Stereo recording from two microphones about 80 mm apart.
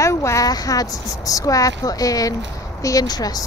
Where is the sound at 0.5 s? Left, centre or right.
Left.